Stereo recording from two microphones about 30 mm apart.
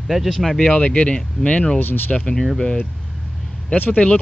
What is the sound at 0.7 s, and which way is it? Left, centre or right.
Speech, left.